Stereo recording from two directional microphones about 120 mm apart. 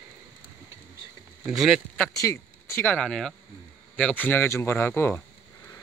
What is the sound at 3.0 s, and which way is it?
Speech, 5° left (ahead or behind).